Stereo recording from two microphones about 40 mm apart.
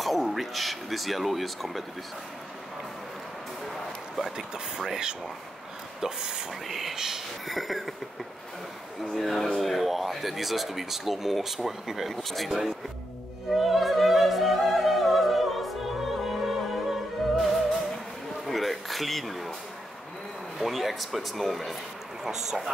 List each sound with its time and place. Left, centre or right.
0.0 s speech: centre
4.2 s speech: centre
9.1 s speech: centre
12.1 s speech: centre
12.4 s speech: centre
13.6 s opera: centre
16.3 s music: centre
18.5 s a sound: centre
20.5 s speech: centre
22.2 s speech: centre